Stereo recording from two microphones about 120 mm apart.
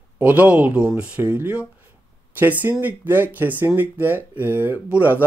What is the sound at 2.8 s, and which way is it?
Speech, 15° right (ahead or behind).